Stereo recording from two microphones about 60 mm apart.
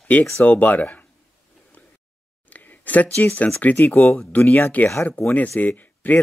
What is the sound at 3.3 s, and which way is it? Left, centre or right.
Speech, left.